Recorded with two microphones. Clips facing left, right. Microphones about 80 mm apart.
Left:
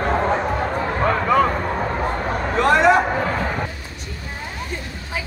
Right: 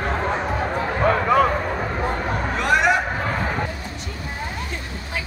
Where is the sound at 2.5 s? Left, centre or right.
Left.